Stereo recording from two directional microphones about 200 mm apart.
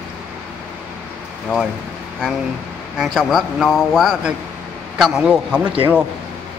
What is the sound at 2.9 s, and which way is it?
Speech, centre (ahead or behind).